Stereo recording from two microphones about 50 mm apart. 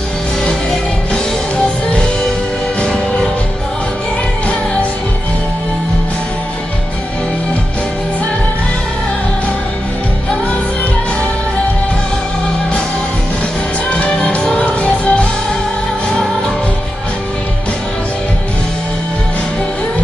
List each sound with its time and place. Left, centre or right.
2.8 s music: centre
13.8 s music: left
14.4 s music: centre
14.7 s music: left